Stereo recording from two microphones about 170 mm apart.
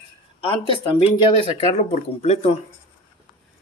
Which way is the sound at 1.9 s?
40° left (ahead or behind).